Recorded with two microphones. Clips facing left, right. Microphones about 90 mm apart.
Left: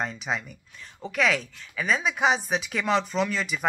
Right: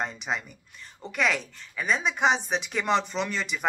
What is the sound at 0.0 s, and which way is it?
Speech, centre (ahead or behind).